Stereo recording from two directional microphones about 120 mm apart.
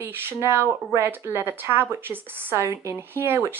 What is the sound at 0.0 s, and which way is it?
Speech, 20° right (ahead or behind).